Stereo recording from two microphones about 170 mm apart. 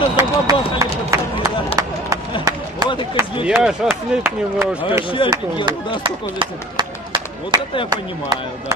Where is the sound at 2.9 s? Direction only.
30° left (ahead or behind).